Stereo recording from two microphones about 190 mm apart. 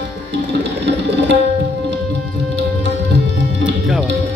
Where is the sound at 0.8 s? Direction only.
65° right (ahead or behind).